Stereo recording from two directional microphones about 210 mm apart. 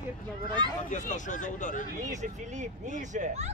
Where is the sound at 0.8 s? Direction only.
35° left (ahead or behind).